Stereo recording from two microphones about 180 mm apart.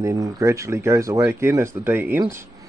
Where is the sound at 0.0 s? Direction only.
20° right (ahead or behind).